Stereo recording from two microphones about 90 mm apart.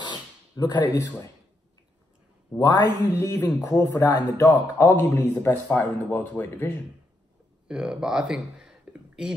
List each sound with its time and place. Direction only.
0.0 s a sound: 55° left (ahead or behind)
2.6 s a man's voice: 50° left (ahead or behind)
3.2 s a man's voice: 30° left (ahead or behind)
7.6 s speech: 10° right (ahead or behind)